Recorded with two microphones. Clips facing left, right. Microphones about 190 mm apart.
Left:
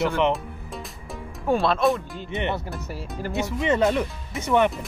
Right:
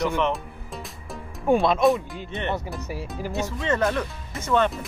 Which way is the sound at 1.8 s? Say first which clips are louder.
Right 2 dB; 5° right (ahead or behind).